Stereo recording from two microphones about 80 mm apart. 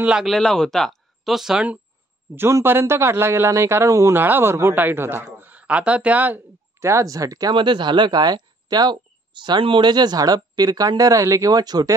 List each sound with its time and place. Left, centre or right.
0.2 s speech: centre
2.3 s speech: right
4.2 s a woman's voice: right
6.8 s speech: right
7.5 s speech: right